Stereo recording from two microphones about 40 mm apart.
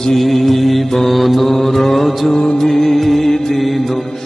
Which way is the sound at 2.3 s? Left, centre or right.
Centre.